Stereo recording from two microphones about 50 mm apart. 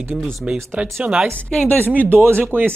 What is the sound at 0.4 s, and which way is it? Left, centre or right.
Speech, centre.